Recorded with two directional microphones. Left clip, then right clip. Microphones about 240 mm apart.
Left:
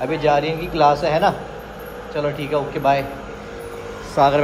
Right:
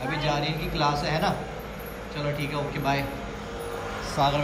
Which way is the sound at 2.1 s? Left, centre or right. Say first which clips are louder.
Left 8 dB; centre.